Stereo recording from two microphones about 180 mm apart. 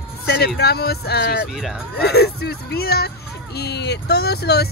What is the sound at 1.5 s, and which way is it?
Speech, 5° right (ahead or behind).